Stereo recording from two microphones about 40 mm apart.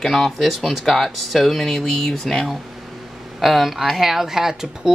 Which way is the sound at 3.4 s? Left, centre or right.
Centre.